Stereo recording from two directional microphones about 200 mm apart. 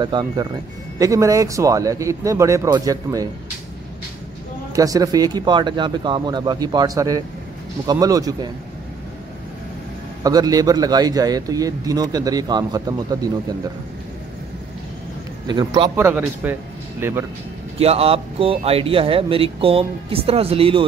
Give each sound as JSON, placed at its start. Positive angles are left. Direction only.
{"t": 0.0, "sound": "a man's voice", "side_deg": -20}
{"t": 4.7, "sound": "a man's voice", "side_deg": -15}
{"t": 10.2, "sound": "speech", "side_deg": -20}
{"t": 15.4, "sound": "a man's voice", "side_deg": -20}
{"t": 17.7, "sound": "speech", "side_deg": -30}